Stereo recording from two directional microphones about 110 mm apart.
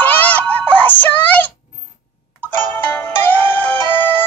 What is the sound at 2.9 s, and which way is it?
Music, 15° left (ahead or behind).